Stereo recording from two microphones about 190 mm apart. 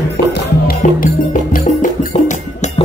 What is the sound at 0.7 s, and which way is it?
Music, 45° left (ahead or behind).